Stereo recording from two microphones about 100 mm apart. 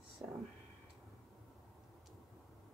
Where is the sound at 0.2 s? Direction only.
40° right (ahead or behind).